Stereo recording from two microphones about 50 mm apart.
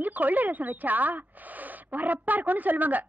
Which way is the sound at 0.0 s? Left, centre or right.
Right.